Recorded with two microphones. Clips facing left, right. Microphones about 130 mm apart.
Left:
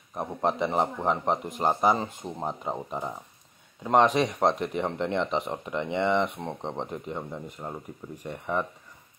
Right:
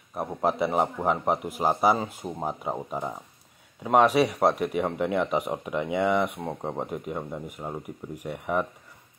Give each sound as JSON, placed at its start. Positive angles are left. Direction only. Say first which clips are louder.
{"t": 0.1, "sound": "speech", "louder": "right 1 dB", "side_deg": -5}